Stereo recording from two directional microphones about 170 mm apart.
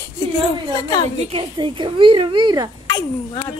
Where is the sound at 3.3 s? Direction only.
30° left (ahead or behind).